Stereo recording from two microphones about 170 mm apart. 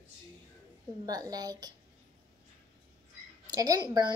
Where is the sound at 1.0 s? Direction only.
20° right (ahead or behind).